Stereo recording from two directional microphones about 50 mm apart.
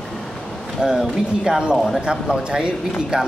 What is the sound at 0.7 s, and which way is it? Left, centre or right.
Speech, centre.